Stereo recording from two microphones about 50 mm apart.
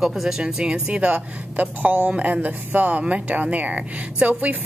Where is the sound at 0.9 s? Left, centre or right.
Right.